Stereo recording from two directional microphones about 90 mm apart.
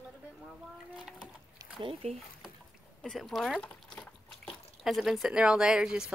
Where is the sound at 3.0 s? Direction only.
Centre (ahead or behind).